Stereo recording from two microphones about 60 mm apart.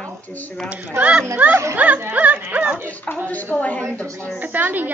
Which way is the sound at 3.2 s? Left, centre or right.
Left.